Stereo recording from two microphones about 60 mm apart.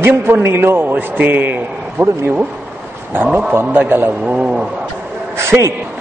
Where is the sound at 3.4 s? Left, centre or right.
Right.